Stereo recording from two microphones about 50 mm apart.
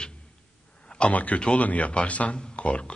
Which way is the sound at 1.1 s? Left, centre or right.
Left.